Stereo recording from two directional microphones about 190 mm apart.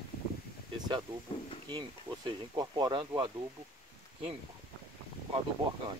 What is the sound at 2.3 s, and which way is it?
Speech, 20° right (ahead or behind).